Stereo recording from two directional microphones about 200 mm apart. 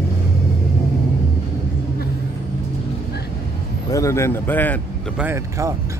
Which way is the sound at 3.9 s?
15° left (ahead or behind).